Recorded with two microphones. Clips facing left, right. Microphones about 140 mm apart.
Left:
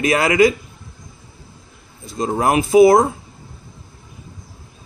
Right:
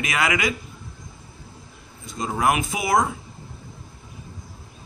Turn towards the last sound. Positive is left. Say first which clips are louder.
# left 12 dB
turn(degrees=35)  # may be behind; listen again after turning